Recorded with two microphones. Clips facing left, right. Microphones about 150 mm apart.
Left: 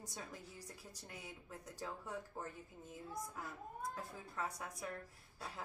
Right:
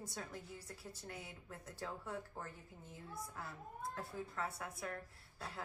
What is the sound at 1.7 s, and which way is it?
Speech, 15° left (ahead or behind).